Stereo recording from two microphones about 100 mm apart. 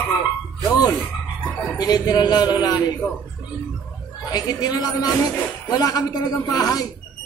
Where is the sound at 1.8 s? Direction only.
40° left (ahead or behind).